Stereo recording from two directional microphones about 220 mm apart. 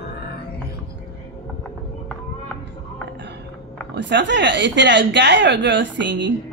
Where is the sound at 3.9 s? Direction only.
55° right (ahead or behind).